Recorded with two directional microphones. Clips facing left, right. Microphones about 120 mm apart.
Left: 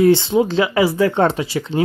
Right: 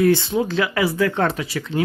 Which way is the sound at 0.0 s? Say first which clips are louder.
Left 4 dB; 25° left (ahead or behind).